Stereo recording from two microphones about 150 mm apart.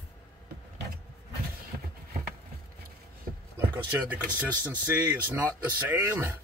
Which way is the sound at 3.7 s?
10° right (ahead or behind).